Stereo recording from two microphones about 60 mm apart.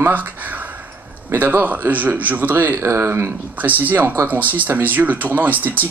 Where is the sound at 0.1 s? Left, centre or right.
Right.